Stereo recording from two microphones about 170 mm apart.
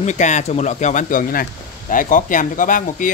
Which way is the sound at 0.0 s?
45° left (ahead or behind).